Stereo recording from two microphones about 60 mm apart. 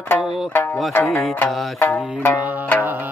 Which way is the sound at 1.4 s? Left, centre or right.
Left.